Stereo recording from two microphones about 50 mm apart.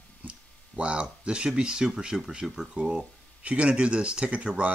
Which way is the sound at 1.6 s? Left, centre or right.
Centre.